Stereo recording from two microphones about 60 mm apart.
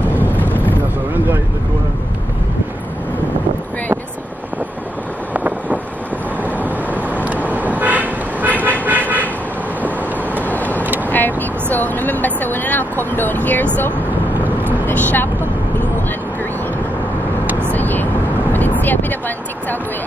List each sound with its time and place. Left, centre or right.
0.1 s vehicle: right
5.3 s wind noise: right
6.4 s vehicle: left
7.2 s vehicle: right
8.5 s vehicle: left
8.8 s vehicle: right
10.4 s vehicle: left
14.4 s vehicle: right
14.9 s vehicle: left
17.5 s vehicle: right
17.7 s vehicle: left